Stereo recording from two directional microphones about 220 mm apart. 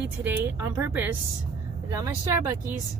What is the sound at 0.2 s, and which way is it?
Speech, 10° right (ahead or behind).